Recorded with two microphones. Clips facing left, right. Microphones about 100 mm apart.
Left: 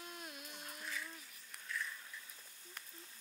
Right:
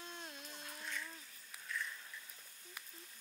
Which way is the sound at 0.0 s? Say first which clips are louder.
Even; 30° right (ahead or behind).